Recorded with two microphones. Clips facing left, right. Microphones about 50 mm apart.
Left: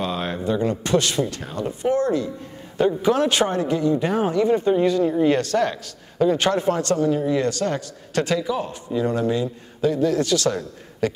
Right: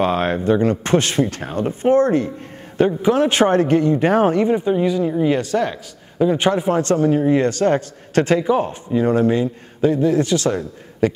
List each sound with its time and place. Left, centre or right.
0.0 s a sound: right
0.5 s a man's voice: right
3.0 s a man's voice: right
4.5 s a man's voice: centre
6.8 s a man's voice: right